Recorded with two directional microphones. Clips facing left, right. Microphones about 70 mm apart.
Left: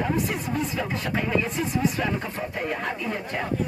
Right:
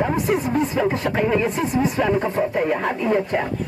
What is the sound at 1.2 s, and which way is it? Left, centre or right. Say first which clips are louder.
Speech: right 6 dB; right.